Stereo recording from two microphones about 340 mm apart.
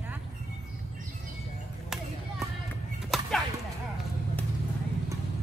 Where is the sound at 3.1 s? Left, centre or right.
Centre.